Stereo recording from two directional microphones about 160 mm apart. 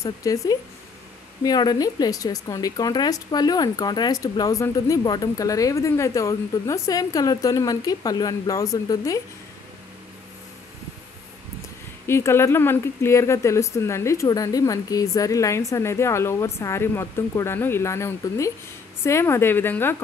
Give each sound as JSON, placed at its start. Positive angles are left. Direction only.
{"t": 0.0, "sound": "a woman's voice", "side_deg": 20}
{"t": 12.1, "sound": "speech", "side_deg": 15}